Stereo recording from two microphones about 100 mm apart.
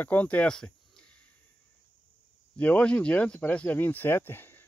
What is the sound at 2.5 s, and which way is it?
Speech, 15° left (ahead or behind).